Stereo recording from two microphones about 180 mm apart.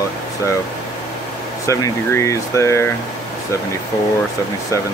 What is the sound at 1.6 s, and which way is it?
Speech, 15° left (ahead or behind).